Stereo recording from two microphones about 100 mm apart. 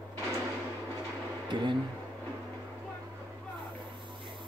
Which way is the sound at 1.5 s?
50° right (ahead or behind).